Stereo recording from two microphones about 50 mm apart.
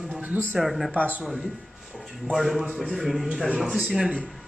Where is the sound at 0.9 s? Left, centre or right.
Right.